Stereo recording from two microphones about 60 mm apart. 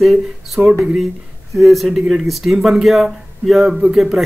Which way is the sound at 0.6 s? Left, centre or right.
Right.